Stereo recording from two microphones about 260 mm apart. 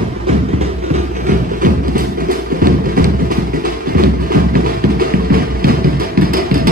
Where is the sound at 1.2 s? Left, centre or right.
Right.